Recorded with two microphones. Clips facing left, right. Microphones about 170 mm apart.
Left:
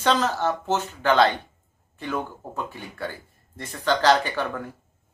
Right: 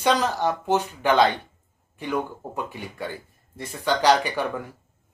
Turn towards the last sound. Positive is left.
turn(degrees=-10)  # may be behind; listen again after turning